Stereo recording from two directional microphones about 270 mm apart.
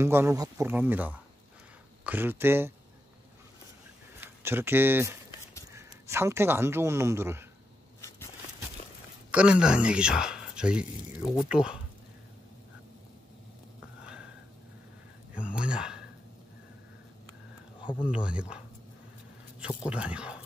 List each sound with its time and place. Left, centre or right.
0.0 s speech: centre
4.2 s speech: centre
9.3 s speech: centre
15.3 s speech: centre
17.7 s a sound: centre
18.0 s speech: centre
19.9 s speech: centre